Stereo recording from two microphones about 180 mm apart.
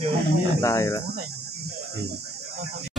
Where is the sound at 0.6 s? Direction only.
15° left (ahead or behind).